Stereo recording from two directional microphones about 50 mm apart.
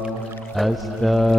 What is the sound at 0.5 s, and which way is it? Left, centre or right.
Mantra, centre.